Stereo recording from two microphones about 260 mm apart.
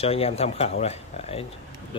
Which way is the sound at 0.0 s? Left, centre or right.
Left.